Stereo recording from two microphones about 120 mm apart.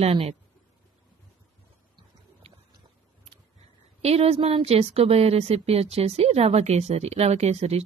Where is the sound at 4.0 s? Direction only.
60° right (ahead or behind).